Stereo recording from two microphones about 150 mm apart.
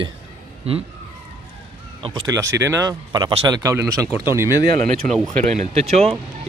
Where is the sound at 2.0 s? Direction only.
35° right (ahead or behind).